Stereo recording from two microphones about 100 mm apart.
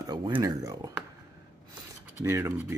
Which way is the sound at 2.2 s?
30° right (ahead or behind).